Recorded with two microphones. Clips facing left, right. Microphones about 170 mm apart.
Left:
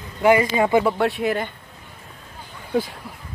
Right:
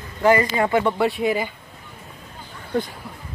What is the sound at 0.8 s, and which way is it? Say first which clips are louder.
Speech: even; centre (ahead or behind).